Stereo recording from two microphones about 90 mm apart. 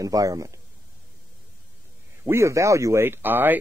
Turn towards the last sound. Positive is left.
turn(degrees=-20)  # may be behind; listen again after turning